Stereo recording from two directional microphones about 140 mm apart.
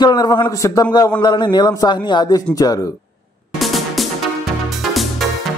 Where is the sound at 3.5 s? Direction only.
Centre (ahead or behind).